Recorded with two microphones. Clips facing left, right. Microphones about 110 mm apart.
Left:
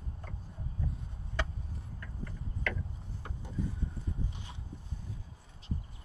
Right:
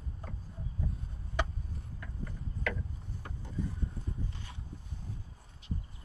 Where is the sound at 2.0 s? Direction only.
5° right (ahead or behind).